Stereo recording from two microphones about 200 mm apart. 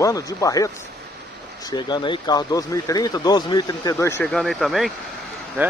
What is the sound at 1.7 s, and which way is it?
Speech, 20° left (ahead or behind).